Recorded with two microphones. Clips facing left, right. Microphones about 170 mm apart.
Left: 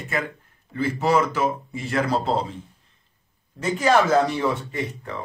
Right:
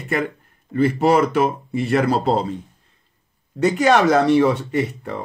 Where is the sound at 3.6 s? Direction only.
70° right (ahead or behind).